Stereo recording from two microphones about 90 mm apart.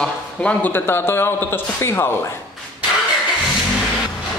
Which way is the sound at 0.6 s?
20° left (ahead or behind).